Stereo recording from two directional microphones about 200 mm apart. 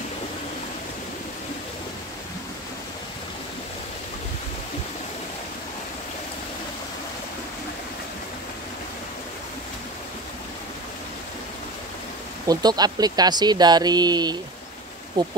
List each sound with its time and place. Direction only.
12.4 s speech: 20° right (ahead or behind)